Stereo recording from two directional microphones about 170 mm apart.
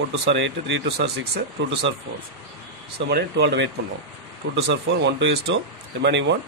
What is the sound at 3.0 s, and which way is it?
Speech, 75° right (ahead or behind).